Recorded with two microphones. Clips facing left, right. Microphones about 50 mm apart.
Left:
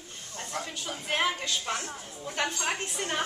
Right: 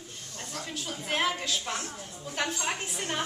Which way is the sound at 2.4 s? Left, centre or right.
Centre.